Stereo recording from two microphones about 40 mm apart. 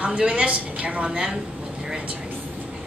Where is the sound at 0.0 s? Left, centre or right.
Right.